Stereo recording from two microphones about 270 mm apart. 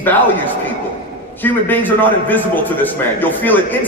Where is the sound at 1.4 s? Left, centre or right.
Centre.